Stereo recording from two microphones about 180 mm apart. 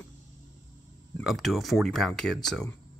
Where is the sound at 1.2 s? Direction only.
Centre (ahead or behind).